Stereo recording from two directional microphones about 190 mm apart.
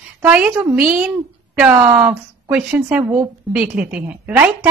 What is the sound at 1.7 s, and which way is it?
Speech, 20° right (ahead or behind).